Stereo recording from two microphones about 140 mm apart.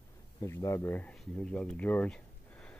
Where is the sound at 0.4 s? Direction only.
20° left (ahead or behind).